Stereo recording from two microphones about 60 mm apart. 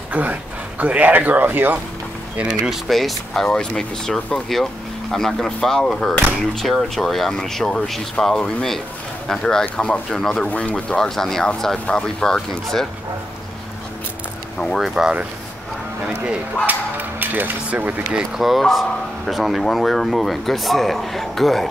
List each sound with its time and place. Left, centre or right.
0.1 s speech: right
2.9 s speech: centre
10.5 s speech: left
11.0 s speech: centre
14.8 s speech: centre
16.6 s a sound: right
17.6 s speech: right
18.1 s speech: centre